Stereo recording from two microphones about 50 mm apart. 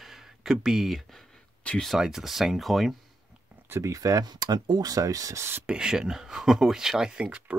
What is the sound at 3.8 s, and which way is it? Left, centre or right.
Speech, right.